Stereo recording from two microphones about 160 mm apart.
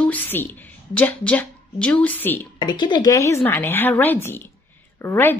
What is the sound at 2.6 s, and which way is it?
A woman's voice, 30° left (ahead or behind).